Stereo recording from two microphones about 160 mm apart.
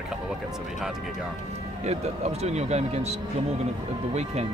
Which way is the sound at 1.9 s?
45° right (ahead or behind).